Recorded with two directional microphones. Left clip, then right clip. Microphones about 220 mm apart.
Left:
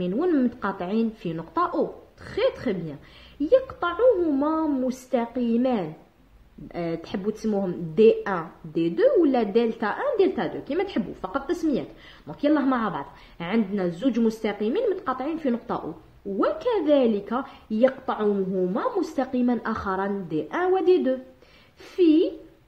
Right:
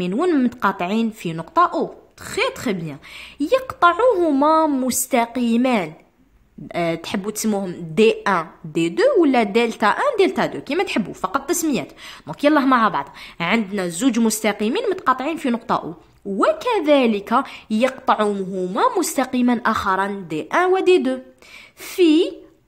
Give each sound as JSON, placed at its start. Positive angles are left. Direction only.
{"t": 0.0, "sound": "a woman's voice", "side_deg": -35}